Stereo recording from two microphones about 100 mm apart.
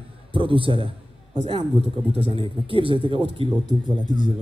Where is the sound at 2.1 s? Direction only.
70° right (ahead or behind); by 4.3 s 50° right (ahead or behind).